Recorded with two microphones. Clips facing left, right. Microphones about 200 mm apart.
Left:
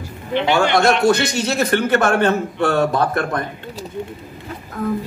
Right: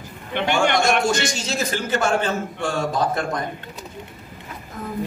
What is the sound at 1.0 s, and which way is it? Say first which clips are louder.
A woman's voice: left 6 dB; 60° left (ahead or behind).